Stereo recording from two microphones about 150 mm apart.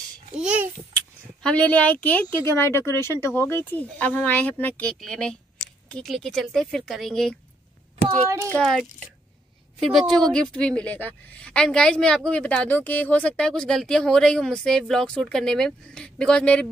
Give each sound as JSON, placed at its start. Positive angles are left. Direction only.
{"t": 0.4, "sound": "a child's voice", "side_deg": -5}
{"t": 1.4, "sound": "speech", "side_deg": 10}
{"t": 8.3, "sound": "a child's voice", "side_deg": -20}
{"t": 8.5, "sound": "speech", "side_deg": 0}
{"t": 9.9, "sound": "speech", "side_deg": 0}